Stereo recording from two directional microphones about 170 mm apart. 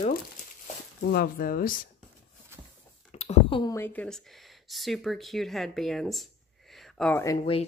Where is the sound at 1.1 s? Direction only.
60° left (ahead or behind).